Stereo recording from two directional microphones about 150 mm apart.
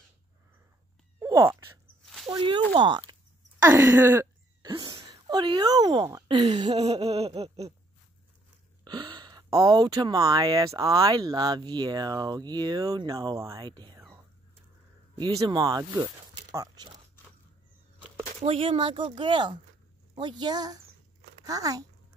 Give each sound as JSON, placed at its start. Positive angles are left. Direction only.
{"t": 1.2, "sound": "a sound", "side_deg": -20}
{"t": 2.2, "sound": "speech", "side_deg": -30}
{"t": 4.6, "sound": "speech", "side_deg": -30}
{"t": 6.8, "sound": "a sound", "side_deg": -45}
{"t": 8.8, "sound": "speech", "side_deg": -30}
{"t": 13.9, "sound": "whispering", "side_deg": -20}
{"t": 15.1, "sound": "speech", "side_deg": -30}
{"t": 18.4, "sound": "speech", "side_deg": -40}